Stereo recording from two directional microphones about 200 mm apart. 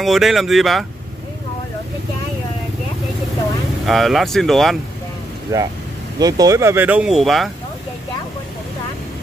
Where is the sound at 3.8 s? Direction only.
Centre (ahead or behind).